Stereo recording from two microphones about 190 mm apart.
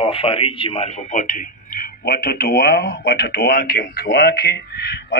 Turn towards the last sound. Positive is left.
turn(degrees=60)  # may be behind; listen again after turning